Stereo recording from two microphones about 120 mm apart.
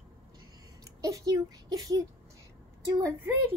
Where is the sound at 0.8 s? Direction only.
30° right (ahead or behind).